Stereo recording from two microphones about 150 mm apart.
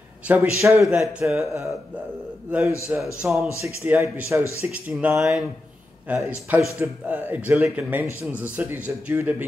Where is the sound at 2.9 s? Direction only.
10° right (ahead or behind).